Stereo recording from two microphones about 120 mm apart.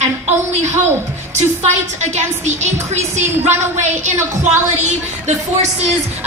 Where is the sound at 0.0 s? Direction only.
70° right (ahead or behind).